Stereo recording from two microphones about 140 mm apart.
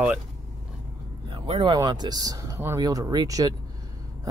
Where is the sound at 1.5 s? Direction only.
35° right (ahead or behind).